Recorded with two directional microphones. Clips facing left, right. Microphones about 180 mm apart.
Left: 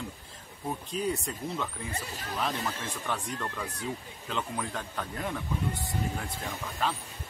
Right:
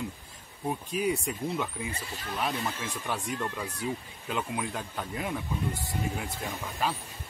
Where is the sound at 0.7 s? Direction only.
10° right (ahead or behind).